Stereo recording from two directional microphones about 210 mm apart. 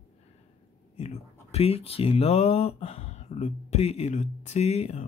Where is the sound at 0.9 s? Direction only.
30° left (ahead or behind).